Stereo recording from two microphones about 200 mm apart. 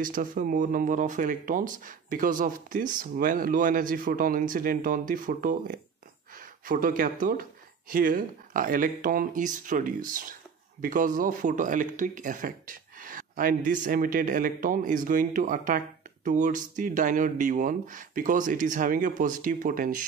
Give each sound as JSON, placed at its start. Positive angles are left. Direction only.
{"t": 0.0, "sound": "speech", "side_deg": -45}